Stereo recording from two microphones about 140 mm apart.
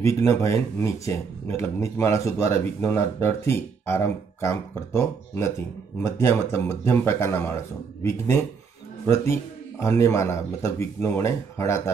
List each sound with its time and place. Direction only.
0.0 s speech: 20° left (ahead or behind)